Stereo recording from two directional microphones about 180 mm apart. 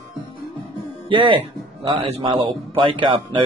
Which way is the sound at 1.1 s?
25° right (ahead or behind).